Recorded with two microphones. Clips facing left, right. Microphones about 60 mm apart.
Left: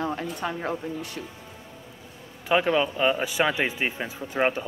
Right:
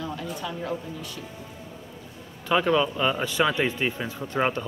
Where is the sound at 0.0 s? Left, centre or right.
Left.